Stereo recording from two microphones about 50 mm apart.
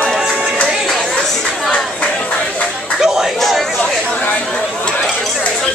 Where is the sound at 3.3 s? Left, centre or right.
Centre.